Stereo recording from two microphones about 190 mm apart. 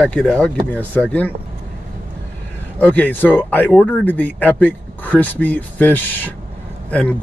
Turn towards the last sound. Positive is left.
turn(degrees=5)  # may be behind; listen again after turning